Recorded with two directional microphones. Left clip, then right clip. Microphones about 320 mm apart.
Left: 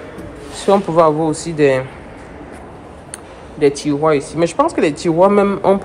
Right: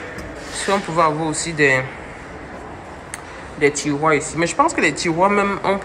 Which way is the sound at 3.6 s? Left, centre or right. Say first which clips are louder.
Left 3 dB; centre.